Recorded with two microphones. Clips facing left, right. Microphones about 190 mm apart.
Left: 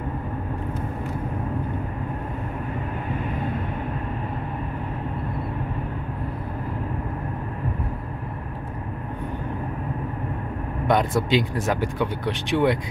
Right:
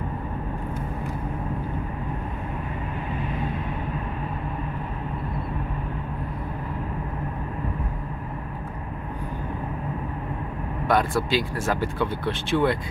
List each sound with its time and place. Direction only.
10.9 s speech: 20° left (ahead or behind)